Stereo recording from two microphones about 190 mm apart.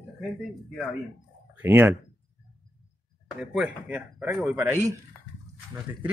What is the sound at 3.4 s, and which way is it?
Speech, 5° right (ahead or behind).